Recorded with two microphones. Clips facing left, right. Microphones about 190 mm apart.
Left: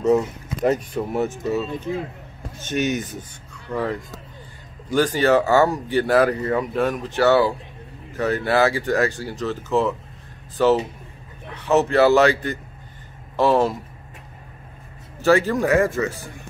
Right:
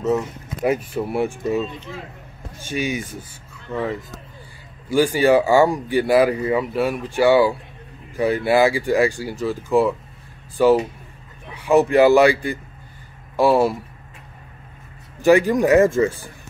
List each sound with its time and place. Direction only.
0.6 s speech: 5° right (ahead or behind)
15.2 s speech: 15° right (ahead or behind)
16.0 s speech: 30° right (ahead or behind)